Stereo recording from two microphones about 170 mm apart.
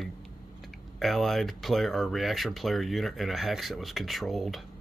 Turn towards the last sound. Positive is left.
turn(degrees=0)  # may be behind; listen again after turning